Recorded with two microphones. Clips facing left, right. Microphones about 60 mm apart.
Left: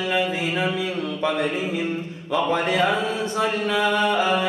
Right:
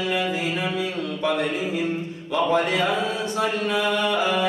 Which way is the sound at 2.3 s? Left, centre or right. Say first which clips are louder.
Even; left.